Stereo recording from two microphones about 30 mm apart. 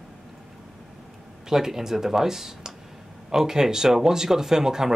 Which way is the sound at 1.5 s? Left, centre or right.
Centre.